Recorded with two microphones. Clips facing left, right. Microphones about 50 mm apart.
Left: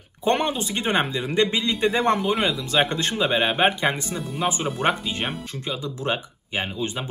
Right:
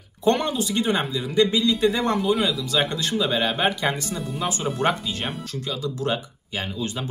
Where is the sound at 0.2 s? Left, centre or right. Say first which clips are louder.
Right 1 dB; left.